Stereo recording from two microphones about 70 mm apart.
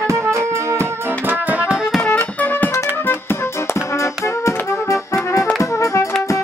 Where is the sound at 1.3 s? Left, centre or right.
Centre.